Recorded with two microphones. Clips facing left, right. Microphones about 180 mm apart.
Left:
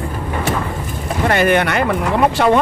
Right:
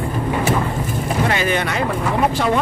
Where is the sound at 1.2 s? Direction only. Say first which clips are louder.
Left 8 dB; 55° left (ahead or behind).